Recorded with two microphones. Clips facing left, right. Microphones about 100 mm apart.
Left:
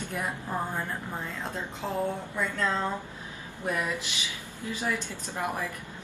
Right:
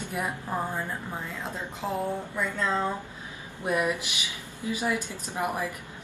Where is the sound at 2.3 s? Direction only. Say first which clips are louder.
Right 1 dB; 10° right (ahead or behind).